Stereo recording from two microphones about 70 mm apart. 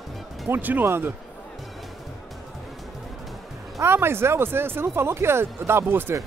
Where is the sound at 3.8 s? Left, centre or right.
Right.